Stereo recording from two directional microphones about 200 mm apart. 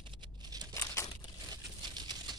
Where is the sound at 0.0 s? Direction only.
25° right (ahead or behind).